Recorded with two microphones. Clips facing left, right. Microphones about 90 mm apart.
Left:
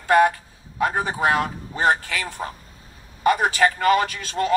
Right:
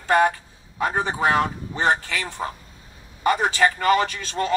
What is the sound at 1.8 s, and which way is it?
A man's voice, 30° right (ahead or behind).